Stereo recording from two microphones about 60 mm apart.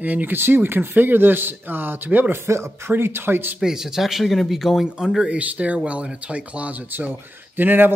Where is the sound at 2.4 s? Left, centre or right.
Right.